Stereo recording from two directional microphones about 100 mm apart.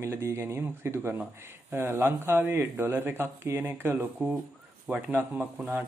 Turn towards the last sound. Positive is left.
turn(degrees=-15)  # may be behind; listen again after turning